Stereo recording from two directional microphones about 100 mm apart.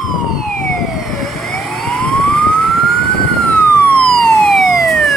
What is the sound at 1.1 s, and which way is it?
Emergency vehicle, 5° left (ahead or behind).